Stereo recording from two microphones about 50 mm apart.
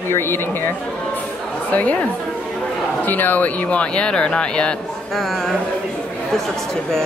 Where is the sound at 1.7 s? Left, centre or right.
Left.